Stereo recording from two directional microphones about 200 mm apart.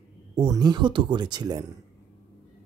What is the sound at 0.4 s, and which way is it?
Speech, 20° right (ahead or behind).